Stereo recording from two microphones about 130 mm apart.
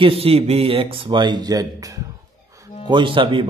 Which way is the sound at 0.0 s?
45° right (ahead or behind).